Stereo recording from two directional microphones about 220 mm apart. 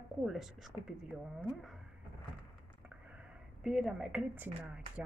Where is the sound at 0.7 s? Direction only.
15° right (ahead or behind).